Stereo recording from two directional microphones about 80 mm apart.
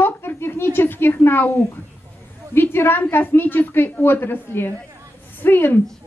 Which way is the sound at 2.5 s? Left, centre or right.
Left.